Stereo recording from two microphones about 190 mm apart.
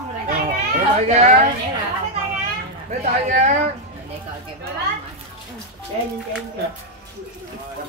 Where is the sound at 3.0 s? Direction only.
40° right (ahead or behind).